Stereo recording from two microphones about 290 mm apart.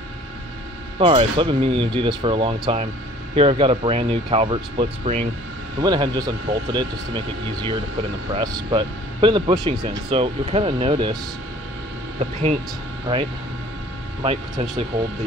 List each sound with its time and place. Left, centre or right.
0.9 s speech: centre
12.2 s speech: right
14.2 s speech: right